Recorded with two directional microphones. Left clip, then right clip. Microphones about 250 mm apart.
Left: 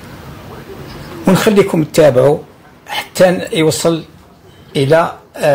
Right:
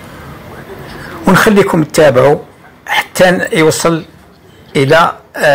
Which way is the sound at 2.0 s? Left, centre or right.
Centre.